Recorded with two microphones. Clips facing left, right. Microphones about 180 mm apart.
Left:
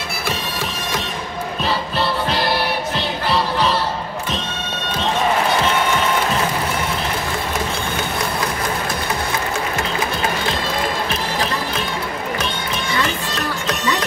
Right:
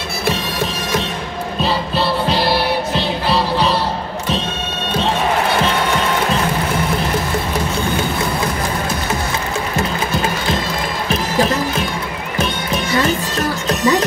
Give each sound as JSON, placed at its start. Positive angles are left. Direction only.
{"t": 12.9, "sound": "music", "side_deg": -40}